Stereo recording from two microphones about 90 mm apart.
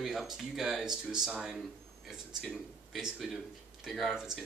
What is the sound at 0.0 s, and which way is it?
Speech, 5° right (ahead or behind).